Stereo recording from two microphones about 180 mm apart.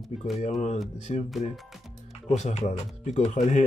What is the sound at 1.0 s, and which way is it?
Speech, 40° left (ahead or behind).